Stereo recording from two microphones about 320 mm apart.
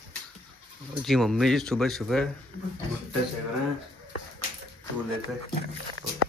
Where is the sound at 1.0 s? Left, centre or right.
Centre.